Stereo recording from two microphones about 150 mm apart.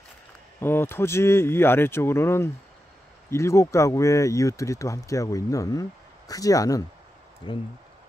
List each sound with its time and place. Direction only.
0.6 s speech: 15° left (ahead or behind)
7.4 s speech: 35° left (ahead or behind)